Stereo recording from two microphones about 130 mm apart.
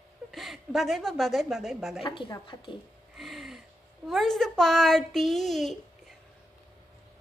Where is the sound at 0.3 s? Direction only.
Centre (ahead or behind).